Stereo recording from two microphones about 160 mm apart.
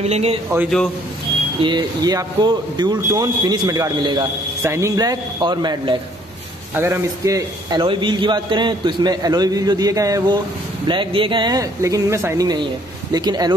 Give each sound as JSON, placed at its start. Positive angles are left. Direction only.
{"t": 0.0, "sound": "speech", "side_deg": -40}
{"t": 1.6, "sound": "a man's voice", "side_deg": -30}
{"t": 6.7, "sound": "speech", "side_deg": -15}
{"t": 7.8, "sound": "a man's voice", "side_deg": -30}